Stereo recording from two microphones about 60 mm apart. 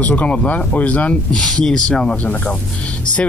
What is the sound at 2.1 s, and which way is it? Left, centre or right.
Speech, left.